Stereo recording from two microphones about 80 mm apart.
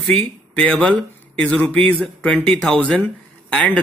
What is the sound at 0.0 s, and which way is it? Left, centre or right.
Speech, centre.